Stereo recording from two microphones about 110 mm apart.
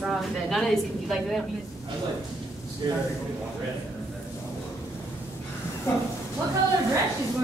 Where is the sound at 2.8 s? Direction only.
40° right (ahead or behind).